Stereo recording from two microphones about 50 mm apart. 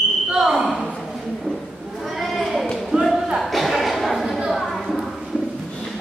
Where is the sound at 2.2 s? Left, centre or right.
Centre.